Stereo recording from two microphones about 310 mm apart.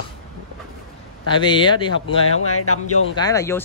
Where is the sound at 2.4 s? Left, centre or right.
Left.